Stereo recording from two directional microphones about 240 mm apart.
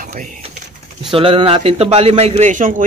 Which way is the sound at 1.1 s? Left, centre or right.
Right.